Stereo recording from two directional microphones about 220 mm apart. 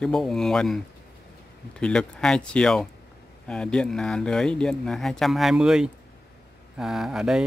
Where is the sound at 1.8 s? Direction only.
5° left (ahead or behind).